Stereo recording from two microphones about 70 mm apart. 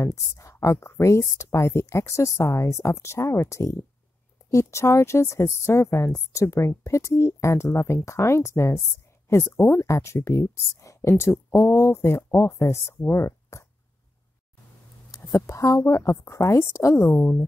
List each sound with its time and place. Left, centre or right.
0.0 s speech: left
15.0 s speech: left
17.2 s speech: left